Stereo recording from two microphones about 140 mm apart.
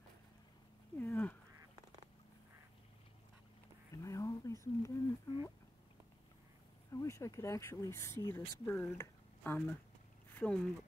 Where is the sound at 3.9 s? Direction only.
25° left (ahead or behind).